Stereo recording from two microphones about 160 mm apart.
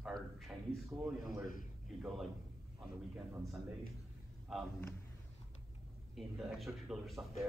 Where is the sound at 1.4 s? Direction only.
60° left (ahead or behind).